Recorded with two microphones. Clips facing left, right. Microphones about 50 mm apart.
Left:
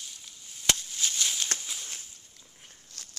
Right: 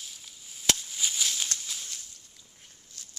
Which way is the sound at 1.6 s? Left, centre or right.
Centre.